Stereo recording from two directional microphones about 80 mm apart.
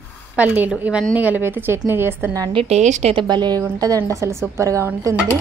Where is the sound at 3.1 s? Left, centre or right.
Right.